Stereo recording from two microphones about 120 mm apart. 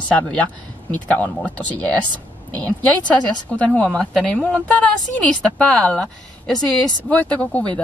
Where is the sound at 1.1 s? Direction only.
10° left (ahead or behind).